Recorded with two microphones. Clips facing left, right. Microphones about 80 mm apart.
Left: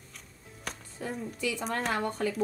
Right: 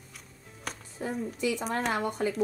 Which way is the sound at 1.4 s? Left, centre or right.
Right.